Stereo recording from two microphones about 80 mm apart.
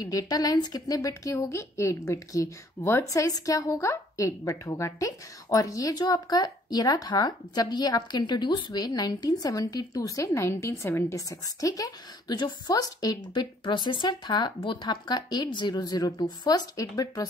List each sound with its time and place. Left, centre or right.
0.0 s speech: left
11.1 s speech: left
12.3 s speech: left
13.3 s speech: left